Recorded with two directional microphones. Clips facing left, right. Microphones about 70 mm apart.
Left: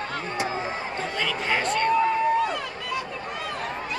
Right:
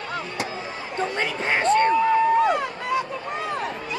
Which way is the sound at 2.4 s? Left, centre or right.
Right.